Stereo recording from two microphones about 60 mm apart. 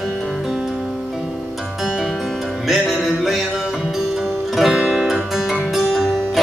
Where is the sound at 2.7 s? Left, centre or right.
Centre.